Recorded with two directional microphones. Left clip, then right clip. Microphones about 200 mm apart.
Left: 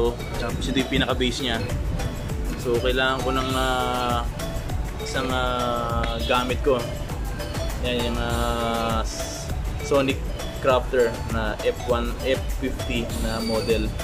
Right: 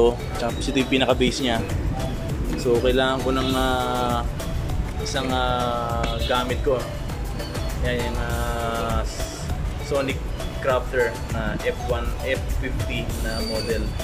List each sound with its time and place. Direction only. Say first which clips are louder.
0.0 s speech: right 5 dB; 5° right (ahead or behind)
2.6 s speech: right 2 dB; centre (ahead or behind)
8.5 s music: left 1 dB; 15° left (ahead or behind)
9.8 s speech: left 3 dB; 15° left (ahead or behind)